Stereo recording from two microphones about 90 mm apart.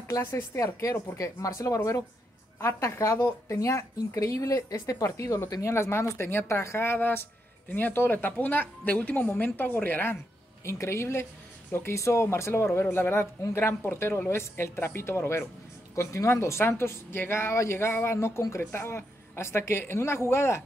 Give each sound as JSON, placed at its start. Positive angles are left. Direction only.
{"t": 0.1, "sound": "speech", "side_deg": 35}